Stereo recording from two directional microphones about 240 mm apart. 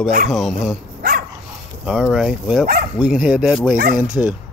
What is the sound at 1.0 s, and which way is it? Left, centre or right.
Dog, right.